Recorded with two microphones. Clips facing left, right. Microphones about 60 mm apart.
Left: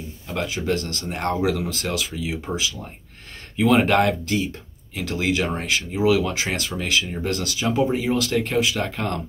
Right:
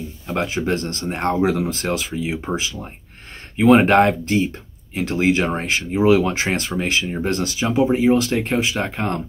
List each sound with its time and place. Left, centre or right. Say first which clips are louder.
0.3 s speech: right 3 dB; right